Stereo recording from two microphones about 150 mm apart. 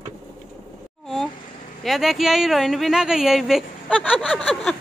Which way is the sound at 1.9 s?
Centre (ahead or behind).